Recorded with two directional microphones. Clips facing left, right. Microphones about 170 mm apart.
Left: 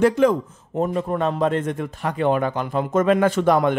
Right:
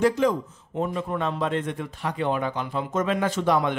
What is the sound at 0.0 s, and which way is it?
Speech, 60° left (ahead or behind).